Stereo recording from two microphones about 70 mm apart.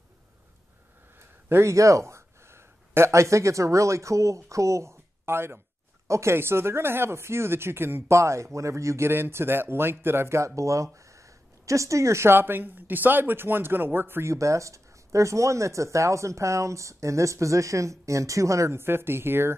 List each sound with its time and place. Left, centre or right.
1.5 s speech: right
14.3 s speech: right